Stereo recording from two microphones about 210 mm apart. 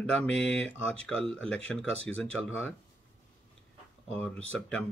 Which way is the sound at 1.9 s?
65° left (ahead or behind).